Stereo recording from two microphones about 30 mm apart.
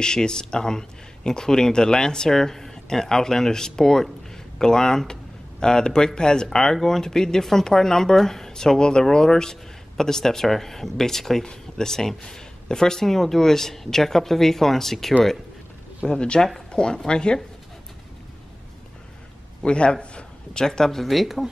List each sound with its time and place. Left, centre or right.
0.0 s speech: left
16.1 s speech: left
19.6 s a man's voice: left
20.6 s speech: centre
21.0 s speech: centre